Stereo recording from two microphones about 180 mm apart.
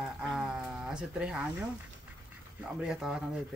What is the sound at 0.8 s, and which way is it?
Speech, 5° right (ahead or behind).